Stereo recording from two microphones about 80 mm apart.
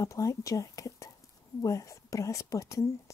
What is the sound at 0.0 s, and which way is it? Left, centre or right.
Speech, left.